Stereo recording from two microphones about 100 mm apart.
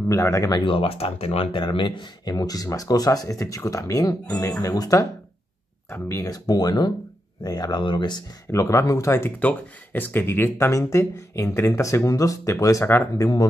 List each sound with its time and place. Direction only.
0.1 s speech: 30° left (ahead or behind)
0.7 s speech: 80° left; by 5.0 s 35° left (ahead or behind)
6.0 s speech: 35° left (ahead or behind)
8.5 s speech: 30° left (ahead or behind)
9.4 s speech: 15° left (ahead or behind)